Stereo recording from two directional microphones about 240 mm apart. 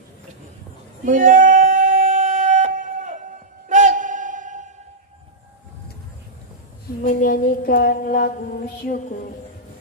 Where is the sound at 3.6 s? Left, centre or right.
Right.